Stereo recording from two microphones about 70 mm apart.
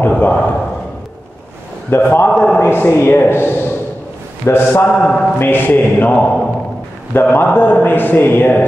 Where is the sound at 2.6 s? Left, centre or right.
Left.